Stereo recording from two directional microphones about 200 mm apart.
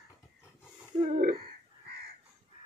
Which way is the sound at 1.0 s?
35° right (ahead or behind).